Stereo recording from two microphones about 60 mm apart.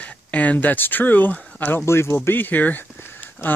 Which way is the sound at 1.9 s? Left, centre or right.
Left.